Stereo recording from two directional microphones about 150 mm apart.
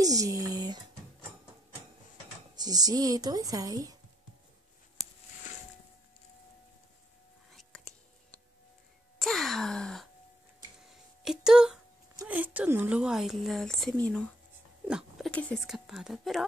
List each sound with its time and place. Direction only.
0.0 s speech: 25° right (ahead or behind)
2.5 s speech: 25° right (ahead or behind)
7.5 s music: centre (ahead or behind)
9.2 s a sound: centre (ahead or behind)
11.2 s speech: 5° right (ahead or behind)
14.9 s speech: 5° right (ahead or behind)